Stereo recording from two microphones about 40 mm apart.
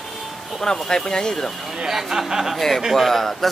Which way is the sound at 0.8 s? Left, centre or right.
Centre.